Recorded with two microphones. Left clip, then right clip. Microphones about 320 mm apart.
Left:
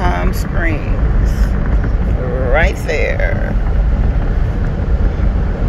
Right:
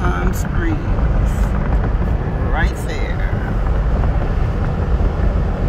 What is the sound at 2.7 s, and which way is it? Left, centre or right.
Speech, centre.